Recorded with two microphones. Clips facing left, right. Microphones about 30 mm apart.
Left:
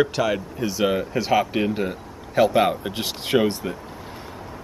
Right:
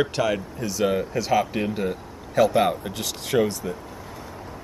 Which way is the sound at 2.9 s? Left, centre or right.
Left.